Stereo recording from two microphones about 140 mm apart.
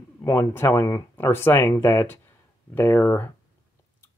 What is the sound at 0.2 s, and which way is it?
Speech, 20° left (ahead or behind).